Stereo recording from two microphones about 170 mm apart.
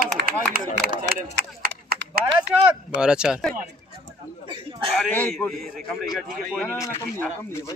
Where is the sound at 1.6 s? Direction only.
60° right (ahead or behind).